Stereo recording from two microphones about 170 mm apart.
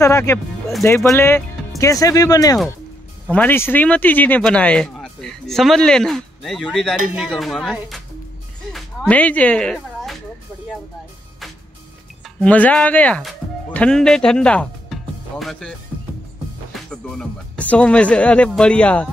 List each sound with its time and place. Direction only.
0.0 s speech: 15° left (ahead or behind)
3.3 s speech: 10° left (ahead or behind)
8.7 s a sound: 10° left (ahead or behind)
12.4 s speech: 10° left (ahead or behind)
16.9 s speech: 5° left (ahead or behind)